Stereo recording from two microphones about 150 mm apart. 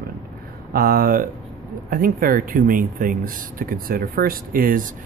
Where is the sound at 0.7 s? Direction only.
80° right.